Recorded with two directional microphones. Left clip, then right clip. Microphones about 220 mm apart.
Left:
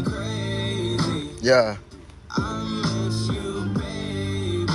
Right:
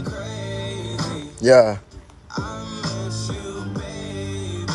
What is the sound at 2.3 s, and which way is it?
Music, 35° left (ahead or behind).